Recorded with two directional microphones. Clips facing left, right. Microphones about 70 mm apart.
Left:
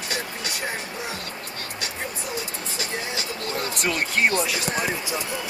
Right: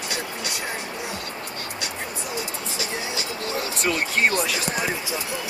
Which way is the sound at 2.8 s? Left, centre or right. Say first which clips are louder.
Even; left.